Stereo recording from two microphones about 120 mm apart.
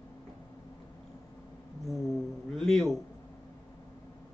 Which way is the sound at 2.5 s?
5° left (ahead or behind).